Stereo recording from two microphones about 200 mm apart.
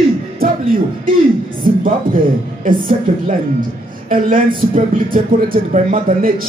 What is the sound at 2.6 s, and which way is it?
Speech, 45° right (ahead or behind).